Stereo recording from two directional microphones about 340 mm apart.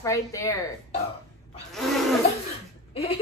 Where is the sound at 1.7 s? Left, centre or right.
Centre.